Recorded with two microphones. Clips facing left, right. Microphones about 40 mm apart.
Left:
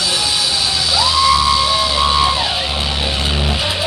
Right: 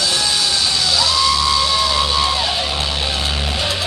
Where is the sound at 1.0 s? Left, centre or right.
Centre.